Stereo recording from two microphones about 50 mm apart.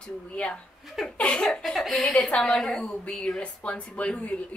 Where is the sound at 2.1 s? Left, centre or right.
Left.